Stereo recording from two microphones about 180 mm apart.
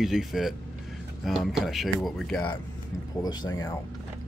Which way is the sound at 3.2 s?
20° left (ahead or behind).